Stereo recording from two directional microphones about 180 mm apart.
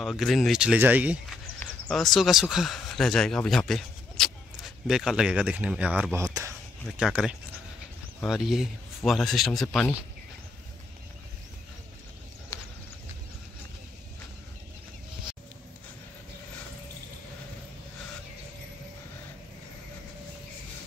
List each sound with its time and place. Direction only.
0.0 s speech: centre (ahead or behind)
6.2 s a sound: 20° right (ahead or behind)
7.0 s speech: 5° right (ahead or behind)